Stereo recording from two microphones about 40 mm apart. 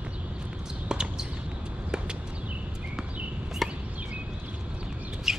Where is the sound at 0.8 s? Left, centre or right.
Right.